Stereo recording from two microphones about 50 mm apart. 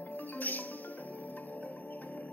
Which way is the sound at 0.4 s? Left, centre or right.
Left.